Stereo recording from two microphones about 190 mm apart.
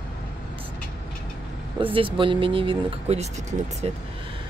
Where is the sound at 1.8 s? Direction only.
25° right (ahead or behind).